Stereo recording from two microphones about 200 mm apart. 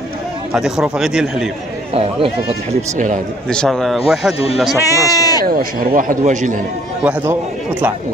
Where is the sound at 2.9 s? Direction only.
40° right (ahead or behind).